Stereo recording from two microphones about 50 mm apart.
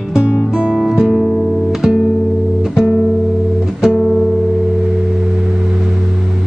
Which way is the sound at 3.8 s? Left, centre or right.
Centre.